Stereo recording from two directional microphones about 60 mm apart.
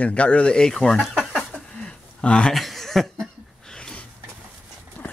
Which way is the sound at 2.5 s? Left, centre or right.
Centre.